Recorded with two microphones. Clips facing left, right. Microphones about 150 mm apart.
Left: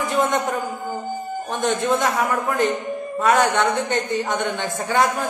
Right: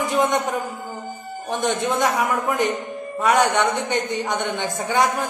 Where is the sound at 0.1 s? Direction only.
15° right (ahead or behind).